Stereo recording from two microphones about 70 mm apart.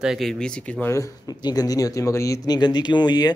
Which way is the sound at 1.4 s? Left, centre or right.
Left.